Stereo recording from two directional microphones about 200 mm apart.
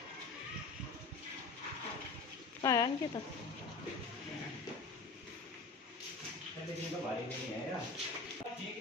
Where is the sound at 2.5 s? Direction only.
20° left (ahead or behind).